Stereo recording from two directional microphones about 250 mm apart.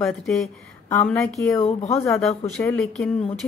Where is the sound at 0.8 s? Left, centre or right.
Centre.